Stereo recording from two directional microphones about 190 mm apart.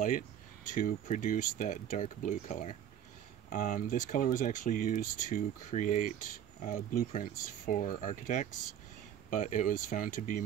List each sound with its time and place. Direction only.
0.7 s speech: 45° left (ahead or behind)